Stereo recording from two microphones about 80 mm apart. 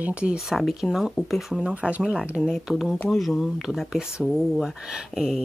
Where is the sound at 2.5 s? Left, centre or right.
Centre.